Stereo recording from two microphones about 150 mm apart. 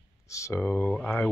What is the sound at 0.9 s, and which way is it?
Speech, 10° left (ahead or behind).